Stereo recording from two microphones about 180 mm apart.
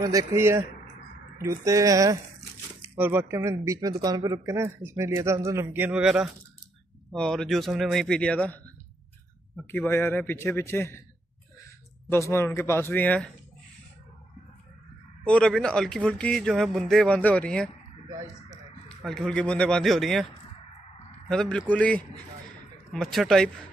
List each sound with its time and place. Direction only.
0.0 s a man's voice: 20° right (ahead or behind); by 8.5 s 5° left (ahead or behind)
9.7 s a man's voice: 10° left (ahead or behind)
12.1 s a man's voice: 15° left (ahead or behind)
15.2 s a man's voice: 5° left (ahead or behind)
18.9 s a man's voice: 5° left (ahead or behind)
21.3 s a man's voice: 5° left (ahead or behind)